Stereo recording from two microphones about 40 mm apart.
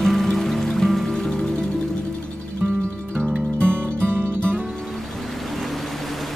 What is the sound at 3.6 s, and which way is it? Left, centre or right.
Music, right.